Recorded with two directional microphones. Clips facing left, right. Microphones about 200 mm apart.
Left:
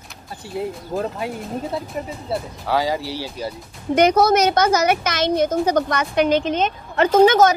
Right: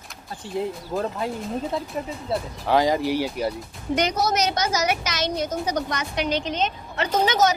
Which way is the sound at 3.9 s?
55° left (ahead or behind).